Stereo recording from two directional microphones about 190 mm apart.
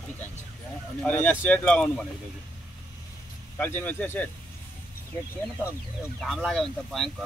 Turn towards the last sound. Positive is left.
turn(degrees=0)  # may be behind; listen again after turning